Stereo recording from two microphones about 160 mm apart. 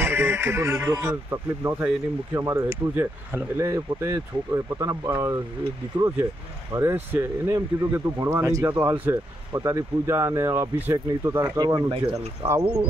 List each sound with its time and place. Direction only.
0.0 s speech: 15° right (ahead or behind)
12.4 s speech: 15° right (ahead or behind)